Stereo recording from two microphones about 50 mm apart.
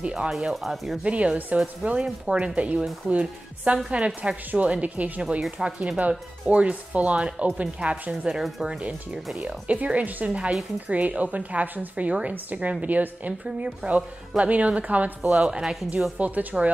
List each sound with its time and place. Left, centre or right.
0.1 s speech: centre
0.5 s speech: centre
1.0 s a woman's voice: right
8.3 s speech: centre
8.6 s speech: right
12.1 s speech: right
12.8 s a woman's voice: right
15.4 s speech: centre
16.2 s a woman's voice: right